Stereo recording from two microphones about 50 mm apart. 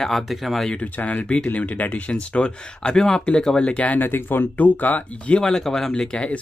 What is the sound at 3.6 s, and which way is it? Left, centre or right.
Speech, left.